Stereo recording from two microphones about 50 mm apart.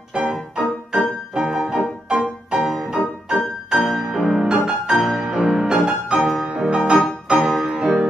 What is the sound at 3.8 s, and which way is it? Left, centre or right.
Music, centre.